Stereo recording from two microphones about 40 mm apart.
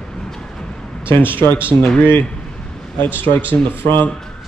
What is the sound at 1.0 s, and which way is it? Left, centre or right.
Speech, left.